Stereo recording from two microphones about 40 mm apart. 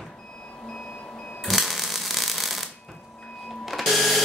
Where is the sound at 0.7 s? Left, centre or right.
Left.